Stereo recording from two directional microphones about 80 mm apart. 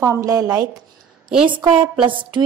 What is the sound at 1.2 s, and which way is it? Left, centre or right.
Speech, centre.